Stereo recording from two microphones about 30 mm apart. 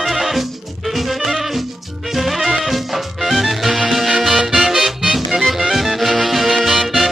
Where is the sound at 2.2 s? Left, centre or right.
Centre.